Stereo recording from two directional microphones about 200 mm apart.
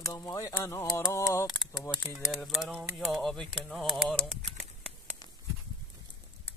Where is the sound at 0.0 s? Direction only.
15° left (ahead or behind).